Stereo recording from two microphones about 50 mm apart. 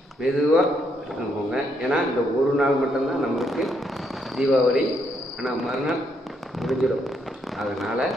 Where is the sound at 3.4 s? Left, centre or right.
Centre.